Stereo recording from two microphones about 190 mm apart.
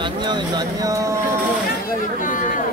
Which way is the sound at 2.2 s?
45° left (ahead or behind).